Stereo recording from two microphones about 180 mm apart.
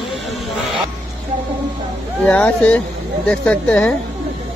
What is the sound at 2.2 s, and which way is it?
Speech, 10° left (ahead or behind).